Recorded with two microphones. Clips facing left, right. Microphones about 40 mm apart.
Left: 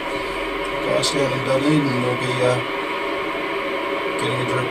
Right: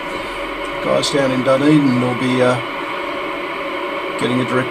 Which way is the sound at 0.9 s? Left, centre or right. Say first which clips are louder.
Right 5 dB; right.